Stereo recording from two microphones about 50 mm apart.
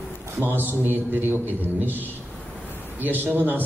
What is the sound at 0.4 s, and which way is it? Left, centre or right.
A man's voice, right.